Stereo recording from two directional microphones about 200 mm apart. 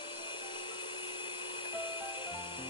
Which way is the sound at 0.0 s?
20° left (ahead or behind).